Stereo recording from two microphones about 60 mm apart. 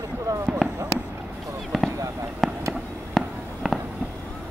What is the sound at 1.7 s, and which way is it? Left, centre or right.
Fireworks, centre.